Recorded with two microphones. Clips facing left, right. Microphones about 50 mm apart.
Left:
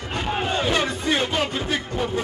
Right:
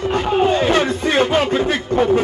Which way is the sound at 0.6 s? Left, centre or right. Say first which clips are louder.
Right 6 dB; right.